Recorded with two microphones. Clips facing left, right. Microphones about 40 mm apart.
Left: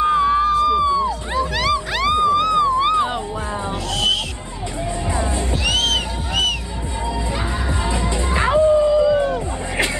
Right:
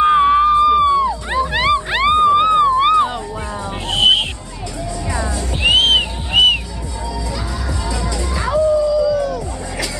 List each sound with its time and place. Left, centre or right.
0.0 s a sound: right
1.0 s a sound: right
3.9 s music: right
5.1 s music: left
5.5 s music: right
7.8 s music: left